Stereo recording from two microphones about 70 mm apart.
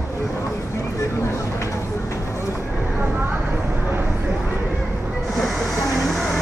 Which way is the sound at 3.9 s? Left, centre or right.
Right.